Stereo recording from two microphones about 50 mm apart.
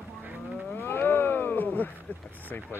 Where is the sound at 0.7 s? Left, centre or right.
Left.